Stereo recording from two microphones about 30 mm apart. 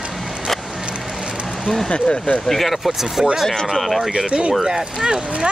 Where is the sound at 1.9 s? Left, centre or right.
Left.